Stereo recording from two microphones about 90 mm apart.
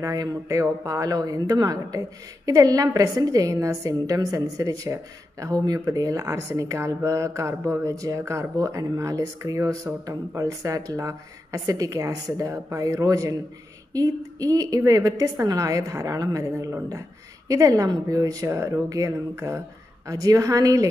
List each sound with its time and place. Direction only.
0.0 s a woman's voice: 40° right (ahead or behind)